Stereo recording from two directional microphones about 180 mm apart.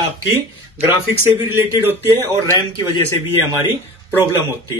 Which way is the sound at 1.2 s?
10° right (ahead or behind).